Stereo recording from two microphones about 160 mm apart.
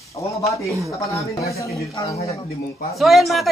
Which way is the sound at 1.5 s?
20° left (ahead or behind).